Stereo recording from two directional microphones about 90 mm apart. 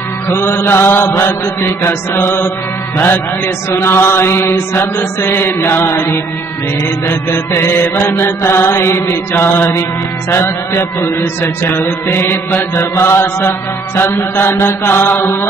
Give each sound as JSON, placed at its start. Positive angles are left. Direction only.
{"t": 0.3, "sound": "mantra", "side_deg": 25}
{"t": 3.7, "sound": "mantra", "side_deg": 30}